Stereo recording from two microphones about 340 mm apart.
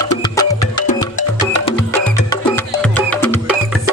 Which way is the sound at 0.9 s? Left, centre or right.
Left.